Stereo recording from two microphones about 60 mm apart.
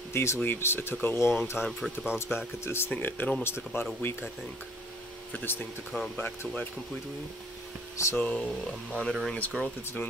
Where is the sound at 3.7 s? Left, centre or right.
Left.